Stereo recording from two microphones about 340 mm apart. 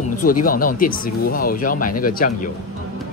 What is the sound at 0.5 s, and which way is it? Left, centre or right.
Speech, left.